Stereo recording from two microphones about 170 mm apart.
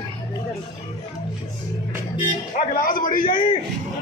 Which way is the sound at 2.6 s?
55° left (ahead or behind).